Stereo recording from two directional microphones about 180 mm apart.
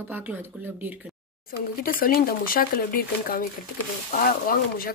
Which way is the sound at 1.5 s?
50° left (ahead or behind).